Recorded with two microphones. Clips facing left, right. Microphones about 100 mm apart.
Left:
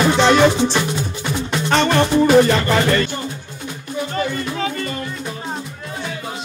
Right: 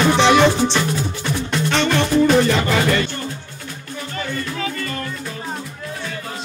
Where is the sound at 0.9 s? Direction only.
15° left (ahead or behind).